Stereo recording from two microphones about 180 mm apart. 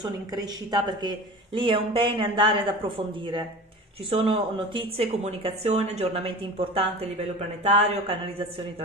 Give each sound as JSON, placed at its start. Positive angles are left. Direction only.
{"t": 0.0, "sound": "speech", "side_deg": -20}